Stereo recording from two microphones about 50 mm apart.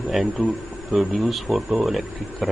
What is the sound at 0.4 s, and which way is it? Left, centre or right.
Speech, right.